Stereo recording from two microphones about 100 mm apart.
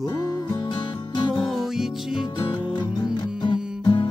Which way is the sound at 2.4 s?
50° left (ahead or behind).